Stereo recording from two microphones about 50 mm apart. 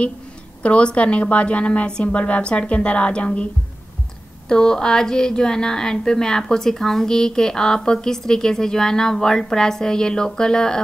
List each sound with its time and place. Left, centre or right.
0.6 s a woman's voice: left
4.5 s a woman's voice: centre